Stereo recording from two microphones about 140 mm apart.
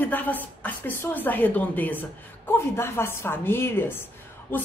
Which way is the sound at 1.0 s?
15° left (ahead or behind).